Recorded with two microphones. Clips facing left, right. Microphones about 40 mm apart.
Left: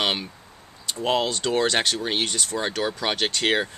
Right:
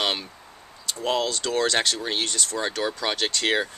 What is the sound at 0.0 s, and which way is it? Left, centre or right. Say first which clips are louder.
Speech: left 1 dB; centre.